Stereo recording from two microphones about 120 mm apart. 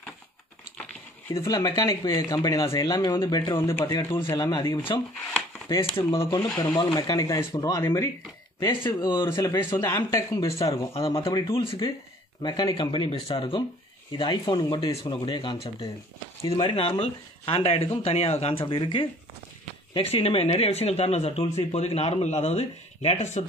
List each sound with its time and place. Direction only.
1.3 s speech: 30° left (ahead or behind)
3.5 s speech: 20° left (ahead or behind)
4.4 s speech: 35° left (ahead or behind)
8.5 s speech: 35° left (ahead or behind)
9.2 s speech: 25° left (ahead or behind)
10.9 s speech: 50° left (ahead or behind)
12.4 s speech: 35° left (ahead or behind)
19.9 s speech: 55° left (ahead or behind)